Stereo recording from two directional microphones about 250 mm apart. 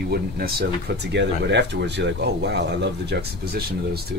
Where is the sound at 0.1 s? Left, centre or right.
Right.